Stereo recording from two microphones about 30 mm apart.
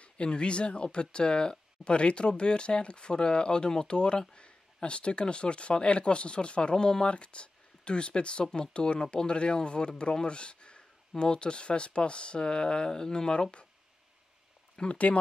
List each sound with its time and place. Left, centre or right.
0.3 s speech: left
14.8 s speech: left